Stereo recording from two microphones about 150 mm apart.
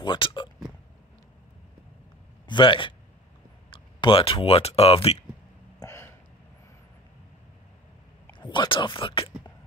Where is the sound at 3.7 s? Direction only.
35° left (ahead or behind).